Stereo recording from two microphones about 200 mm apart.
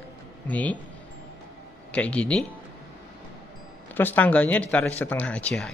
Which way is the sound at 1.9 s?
5° left (ahead or behind).